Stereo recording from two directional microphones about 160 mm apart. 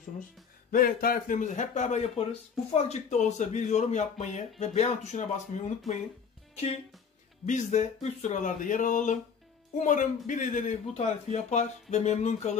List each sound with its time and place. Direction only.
0.7 s a man's voice: 65° left (ahead or behind)
7.4 s a man's voice: 50° left (ahead or behind)